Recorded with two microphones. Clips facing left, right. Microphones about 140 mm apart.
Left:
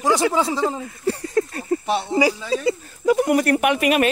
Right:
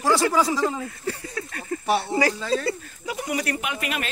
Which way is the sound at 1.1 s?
35° left (ahead or behind).